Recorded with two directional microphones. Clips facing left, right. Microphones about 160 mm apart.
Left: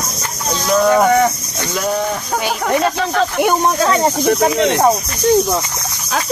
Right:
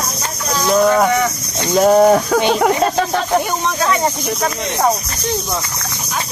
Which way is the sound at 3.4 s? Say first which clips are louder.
Left 5 dB; 55° left (ahead or behind).